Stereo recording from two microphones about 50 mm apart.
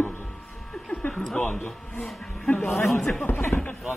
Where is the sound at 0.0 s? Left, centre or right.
Left.